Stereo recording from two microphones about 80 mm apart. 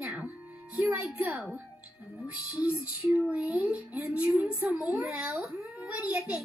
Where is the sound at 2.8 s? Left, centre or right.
Centre.